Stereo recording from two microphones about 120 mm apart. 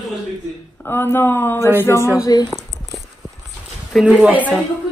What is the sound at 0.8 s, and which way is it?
Speech, 20° left (ahead or behind).